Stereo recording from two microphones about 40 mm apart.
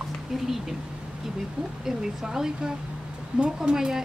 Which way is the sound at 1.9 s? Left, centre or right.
Centre.